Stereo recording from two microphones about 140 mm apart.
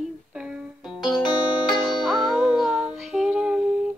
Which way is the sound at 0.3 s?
5° right (ahead or behind).